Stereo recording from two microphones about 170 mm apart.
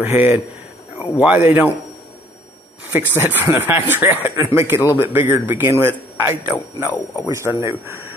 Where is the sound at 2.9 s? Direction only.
15° right (ahead or behind).